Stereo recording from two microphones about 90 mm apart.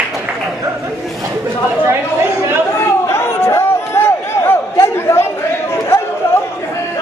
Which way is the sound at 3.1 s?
30° left (ahead or behind).